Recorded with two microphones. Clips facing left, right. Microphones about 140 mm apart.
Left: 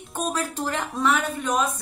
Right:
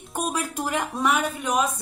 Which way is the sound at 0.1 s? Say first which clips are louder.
Even; 10° right (ahead or behind).